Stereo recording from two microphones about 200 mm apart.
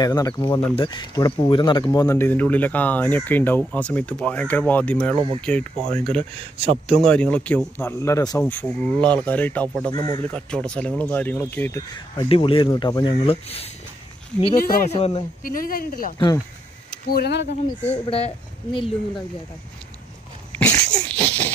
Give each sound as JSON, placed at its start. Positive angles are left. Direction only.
{"t": 0.0, "sound": "speech", "side_deg": 20}
{"t": 5.1, "sound": "speech", "side_deg": -25}
{"t": 5.4, "sound": "speech", "side_deg": 5}
{"t": 6.6, "sound": "speech", "side_deg": -30}
{"t": 7.0, "sound": "speech", "side_deg": 5}
{"t": 9.9, "sound": "speech", "side_deg": 20}
{"t": 10.3, "sound": "speech", "side_deg": 5}
{"t": 12.2, "sound": "speech", "side_deg": 25}
{"t": 14.5, "sound": "speech", "side_deg": 45}
{"t": 15.0, "sound": "speech", "side_deg": 30}
{"t": 15.4, "sound": "speech", "side_deg": 45}
{"t": 18.0, "sound": "speech", "side_deg": 25}
{"t": 20.5, "sound": "a sound", "side_deg": 5}